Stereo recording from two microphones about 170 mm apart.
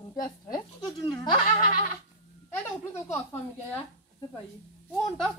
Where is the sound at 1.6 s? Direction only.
50° left (ahead or behind).